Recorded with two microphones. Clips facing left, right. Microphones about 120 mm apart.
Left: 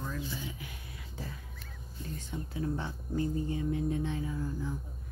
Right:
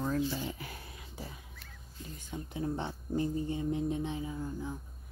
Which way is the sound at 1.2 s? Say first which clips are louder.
Left 2 dB; 15° right (ahead or behind).